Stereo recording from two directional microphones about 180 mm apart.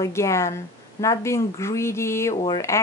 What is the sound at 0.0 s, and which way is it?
Speech, 15° left (ahead or behind).